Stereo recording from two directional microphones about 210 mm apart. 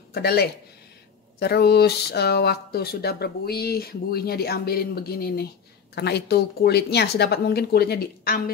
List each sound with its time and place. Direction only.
0.1 s speech: 50° left (ahead or behind)